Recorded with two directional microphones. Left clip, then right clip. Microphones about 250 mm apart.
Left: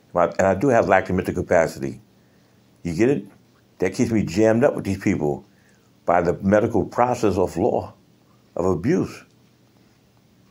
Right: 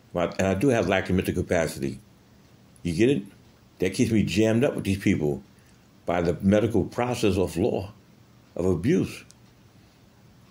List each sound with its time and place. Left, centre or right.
0.1 s speech: centre